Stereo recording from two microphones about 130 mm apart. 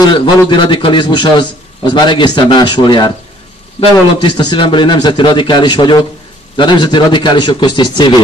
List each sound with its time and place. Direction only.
0.0 s a man's voice: 35° left (ahead or behind)
3.8 s a man's voice: 50° left (ahead or behind)
4.2 s a man's voice: 35° left (ahead or behind)